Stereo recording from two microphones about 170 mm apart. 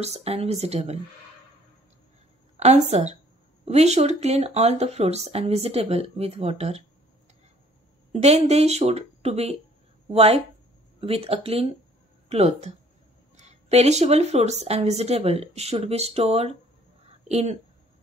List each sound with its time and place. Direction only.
0.0 s a woman's voice: 40° right (ahead or behind)
2.5 s a woman's voice: 40° right (ahead or behind)
8.1 s a woman's voice: 40° right (ahead or behind)